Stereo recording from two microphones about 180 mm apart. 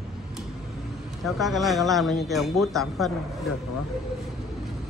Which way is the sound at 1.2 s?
Centre (ahead or behind).